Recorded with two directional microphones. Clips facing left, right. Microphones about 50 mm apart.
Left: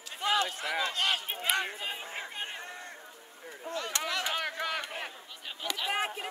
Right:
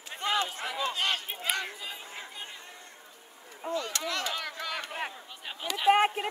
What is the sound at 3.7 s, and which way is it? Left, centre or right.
Speech, centre.